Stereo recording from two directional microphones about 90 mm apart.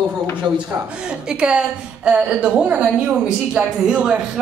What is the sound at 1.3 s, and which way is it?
A woman's voice, 10° right (ahead or behind).